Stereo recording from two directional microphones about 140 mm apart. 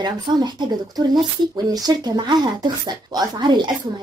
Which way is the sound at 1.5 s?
30° right (ahead or behind).